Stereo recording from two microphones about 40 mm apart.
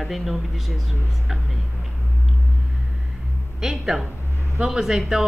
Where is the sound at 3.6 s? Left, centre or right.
Centre.